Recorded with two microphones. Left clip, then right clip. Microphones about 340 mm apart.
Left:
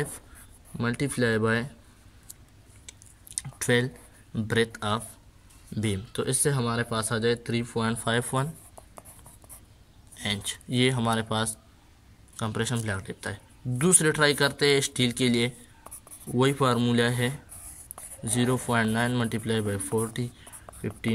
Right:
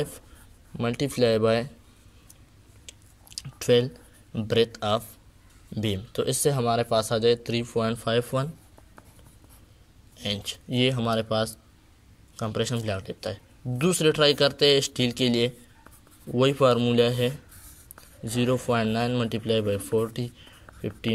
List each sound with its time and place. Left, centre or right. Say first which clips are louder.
0.7 s speech: right 3 dB; centre
2.9 s chewing: even; centre
4.5 s speech: right 3 dB; centre
10.1 s a man's voice: even; centre